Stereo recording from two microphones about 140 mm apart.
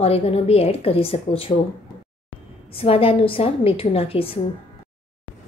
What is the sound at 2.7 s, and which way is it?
A woman's voice, 40° left (ahead or behind).